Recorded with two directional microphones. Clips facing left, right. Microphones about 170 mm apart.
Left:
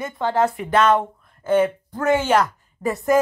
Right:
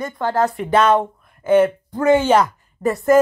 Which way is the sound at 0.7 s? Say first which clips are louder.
Right 2 dB; 30° right (ahead or behind).